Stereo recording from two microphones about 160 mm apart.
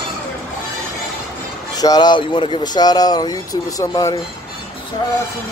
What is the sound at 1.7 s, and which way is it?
Speech, 25° left (ahead or behind).